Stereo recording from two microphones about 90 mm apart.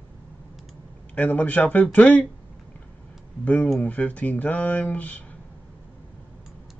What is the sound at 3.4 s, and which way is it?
Speech, 15° left (ahead or behind).